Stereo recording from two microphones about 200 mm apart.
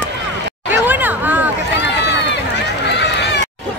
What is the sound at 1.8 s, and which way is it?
Run, 60° left (ahead or behind).